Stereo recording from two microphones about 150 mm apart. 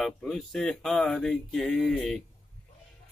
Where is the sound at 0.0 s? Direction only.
Centre (ahead or behind).